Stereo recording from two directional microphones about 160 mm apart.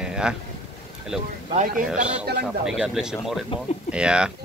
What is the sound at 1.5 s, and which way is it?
Speech, 60° right (ahead or behind).